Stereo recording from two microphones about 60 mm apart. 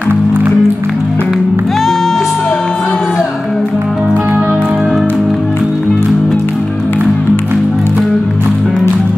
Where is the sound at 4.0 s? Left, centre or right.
Right.